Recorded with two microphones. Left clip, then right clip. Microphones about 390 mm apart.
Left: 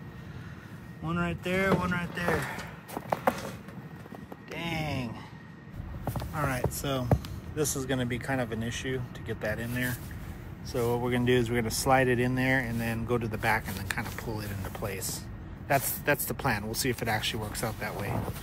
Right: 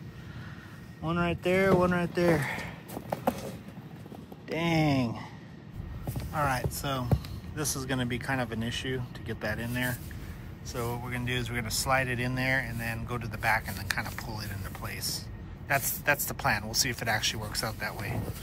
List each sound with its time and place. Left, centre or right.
1.0 s speech: centre
4.6 s speech: centre
6.0 s speech: centre
7.2 s basketball bounce: centre
7.9 s speech: centre